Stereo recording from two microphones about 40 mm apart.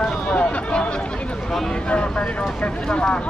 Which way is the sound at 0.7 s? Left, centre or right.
Left.